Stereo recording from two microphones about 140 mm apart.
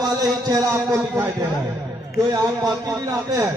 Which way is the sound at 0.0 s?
30° right (ahead or behind).